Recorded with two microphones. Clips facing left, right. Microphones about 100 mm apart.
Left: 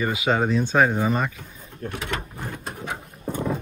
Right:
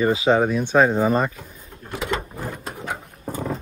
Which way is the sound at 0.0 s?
30° right (ahead or behind).